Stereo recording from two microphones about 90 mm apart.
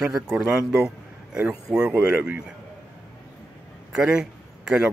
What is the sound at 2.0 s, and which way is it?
Speech, 15° right (ahead or behind).